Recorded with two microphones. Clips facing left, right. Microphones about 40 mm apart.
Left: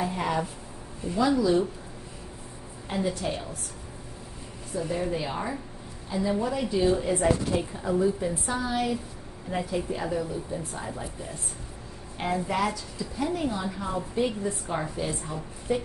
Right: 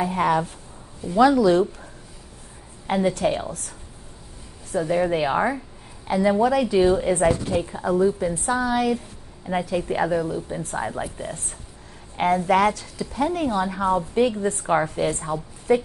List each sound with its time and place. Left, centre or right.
0.1 s speech: right
1.1 s a woman's voice: right
2.9 s speech: right
4.7 s a woman's voice: right
6.0 s a woman's voice: right
6.9 s a woman's voice: right
7.8 s speech: right
9.7 s speech: right
10.0 s a woman's voice: right
12.4 s a woman's voice: right